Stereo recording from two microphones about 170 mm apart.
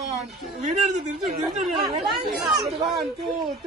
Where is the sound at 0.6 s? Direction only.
40° right (ahead or behind).